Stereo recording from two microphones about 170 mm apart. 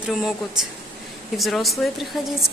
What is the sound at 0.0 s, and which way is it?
A woman's voice, 5° right (ahead or behind).